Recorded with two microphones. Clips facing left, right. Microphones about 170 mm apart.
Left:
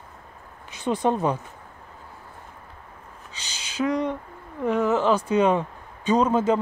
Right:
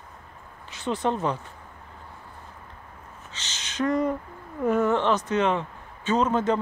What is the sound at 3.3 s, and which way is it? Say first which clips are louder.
Speech: left 2 dB; 10° left (ahead or behind).